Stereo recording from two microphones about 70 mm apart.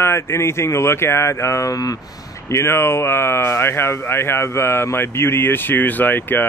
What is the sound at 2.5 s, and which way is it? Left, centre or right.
Speech, left.